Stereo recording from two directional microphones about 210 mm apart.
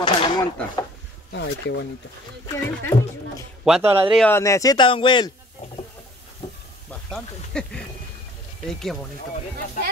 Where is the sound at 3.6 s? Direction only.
Centre (ahead or behind).